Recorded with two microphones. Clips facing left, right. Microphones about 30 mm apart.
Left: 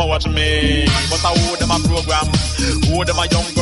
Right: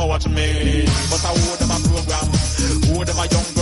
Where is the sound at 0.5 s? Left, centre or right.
Left.